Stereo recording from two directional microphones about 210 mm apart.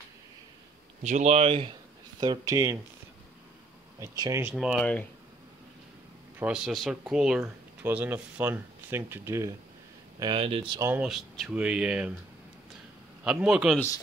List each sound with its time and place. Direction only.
1.0 s speech: 35° right (ahead or behind); by 2.8 s 15° right (ahead or behind)
4.0 s speech: 15° right (ahead or behind); by 5.0 s centre (ahead or behind)
6.4 s speech: 5° right (ahead or behind)
10.1 s speech: 25° right (ahead or behind)
10.9 s speech: 5° right (ahead or behind)
13.2 s speech: 5° right (ahead or behind)